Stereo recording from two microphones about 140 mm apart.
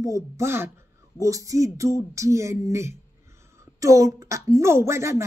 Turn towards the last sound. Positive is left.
turn(degrees=-20)  # may be behind; listen again after turning